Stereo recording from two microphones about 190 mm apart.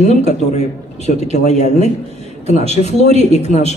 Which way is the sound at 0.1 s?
35° left (ahead or behind).